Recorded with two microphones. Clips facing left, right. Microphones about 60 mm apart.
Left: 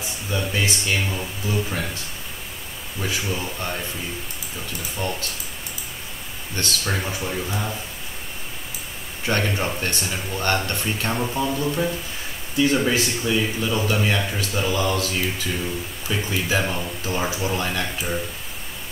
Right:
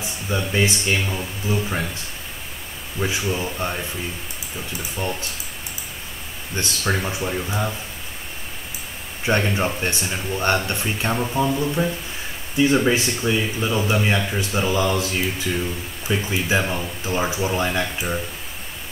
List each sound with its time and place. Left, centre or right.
0.5 s speech: right
0.9 s speech: centre
1.5 s speech: centre
3.0 s speech: right
3.3 s speech: centre
4.9 s speech: centre
6.5 s speech: centre
9.2 s speech: centre
11.1 s speech: centre
12.5 s speech: centre